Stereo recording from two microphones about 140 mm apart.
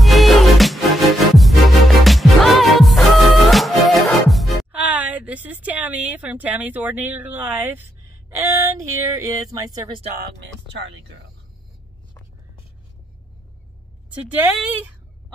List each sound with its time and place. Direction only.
0.0 s music: centre (ahead or behind)
8.3 s a sound: 20° right (ahead or behind)
14.3 s speech: 10° right (ahead or behind)